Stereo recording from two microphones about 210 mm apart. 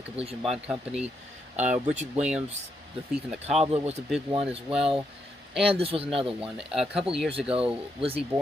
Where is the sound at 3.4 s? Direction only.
30° right (ahead or behind).